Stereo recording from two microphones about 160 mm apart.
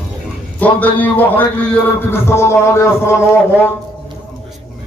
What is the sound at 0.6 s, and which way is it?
A man's voice, 10° left (ahead or behind).